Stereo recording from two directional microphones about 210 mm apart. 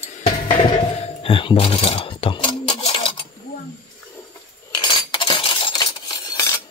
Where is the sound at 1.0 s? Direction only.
25° left (ahead or behind).